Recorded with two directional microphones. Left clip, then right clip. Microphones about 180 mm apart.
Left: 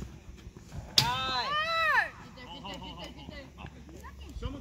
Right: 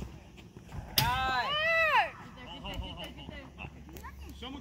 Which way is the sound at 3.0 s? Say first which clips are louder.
Even; 35° right (ahead or behind).